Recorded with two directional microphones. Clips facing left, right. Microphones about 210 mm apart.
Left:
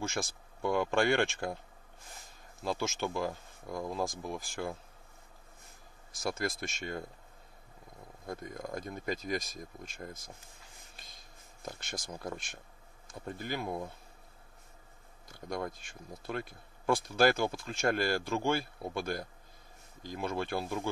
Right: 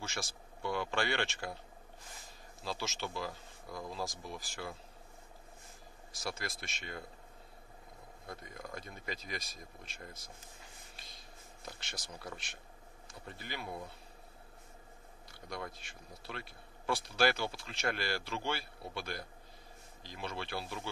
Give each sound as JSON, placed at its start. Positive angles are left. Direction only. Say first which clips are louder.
{"t": 0.0, "sound": "speech", "louder": "left 7 dB", "side_deg": 50}
{"t": 2.6, "sound": "speech", "louder": "left 6 dB", "side_deg": 50}
{"t": 6.1, "sound": "speech", "louder": "left 7 dB", "side_deg": 50}
{"t": 8.3, "sound": "speech", "louder": "left 7 dB", "side_deg": 45}
{"t": 11.0, "sound": "a sound", "louder": "right 1 dB", "side_deg": 45}
{"t": 13.1, "sound": "speech", "louder": "left 8 dB", "side_deg": 45}
{"t": 15.2, "sound": "speech", "louder": "left 6 dB", "side_deg": 45}